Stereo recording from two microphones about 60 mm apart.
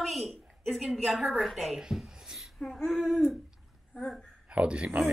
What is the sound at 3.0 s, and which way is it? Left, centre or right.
Speech, centre.